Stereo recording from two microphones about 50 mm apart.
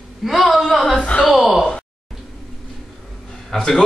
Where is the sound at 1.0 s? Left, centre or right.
Left.